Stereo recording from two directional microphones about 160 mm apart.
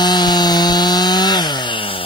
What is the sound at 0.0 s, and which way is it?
Chainsaw, 25° left (ahead or behind).